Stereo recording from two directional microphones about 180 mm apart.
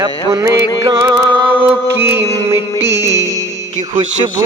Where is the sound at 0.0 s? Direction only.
20° right (ahead or behind).